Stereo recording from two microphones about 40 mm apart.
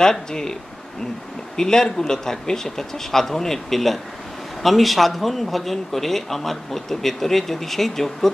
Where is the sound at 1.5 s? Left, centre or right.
Centre.